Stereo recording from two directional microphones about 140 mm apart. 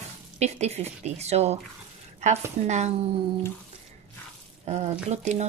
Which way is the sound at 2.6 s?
55° right (ahead or behind).